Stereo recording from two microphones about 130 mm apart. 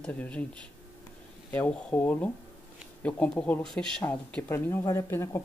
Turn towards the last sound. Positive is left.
turn(degrees=20)  # may be behind; listen again after turning